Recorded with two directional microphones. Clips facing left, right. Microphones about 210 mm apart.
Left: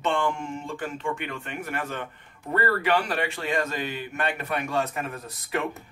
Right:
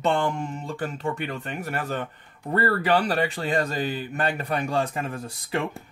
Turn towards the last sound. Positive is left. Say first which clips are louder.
# right 1 dB
turn(degrees=-30)  # may be behind; listen again after turning